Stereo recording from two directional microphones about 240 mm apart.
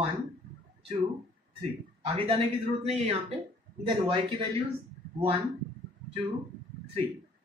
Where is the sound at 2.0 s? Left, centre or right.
Right.